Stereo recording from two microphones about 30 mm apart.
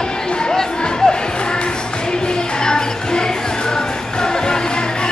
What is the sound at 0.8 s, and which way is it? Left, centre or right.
Music, left.